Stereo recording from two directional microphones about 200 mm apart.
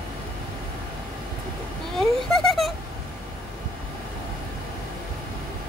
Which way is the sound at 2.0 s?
Centre (ahead or behind).